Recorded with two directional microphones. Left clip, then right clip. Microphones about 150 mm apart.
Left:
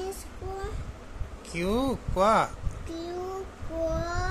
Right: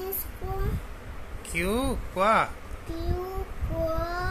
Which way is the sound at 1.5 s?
20° left (ahead or behind).